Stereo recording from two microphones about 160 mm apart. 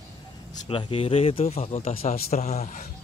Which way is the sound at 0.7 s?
35° left (ahead or behind).